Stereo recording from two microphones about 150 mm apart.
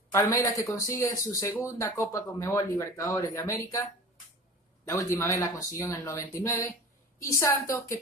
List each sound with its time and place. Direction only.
0.1 s speech: 20° left (ahead or behind)
4.8 s speech: 20° left (ahead or behind)